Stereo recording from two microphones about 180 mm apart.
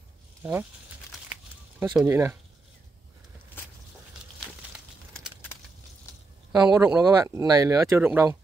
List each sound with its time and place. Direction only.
0.4 s speech: 10° right (ahead or behind)
2.0 s speech: 15° right (ahead or behind)
4.7 s a sound: 5° right (ahead or behind)
6.5 s speech: 20° right (ahead or behind)